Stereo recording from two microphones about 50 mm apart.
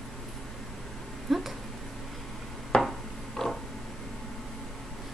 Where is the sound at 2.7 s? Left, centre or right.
Centre.